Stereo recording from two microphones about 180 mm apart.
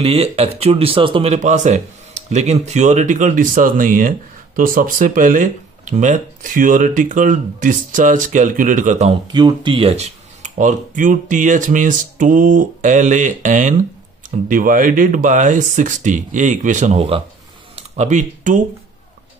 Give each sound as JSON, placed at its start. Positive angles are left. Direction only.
{"t": 0.0, "sound": "speech", "side_deg": -35}
{"t": 9.3, "sound": "speech", "side_deg": -25}